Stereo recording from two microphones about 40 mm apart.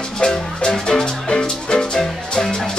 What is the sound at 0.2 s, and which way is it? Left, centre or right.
Music, left.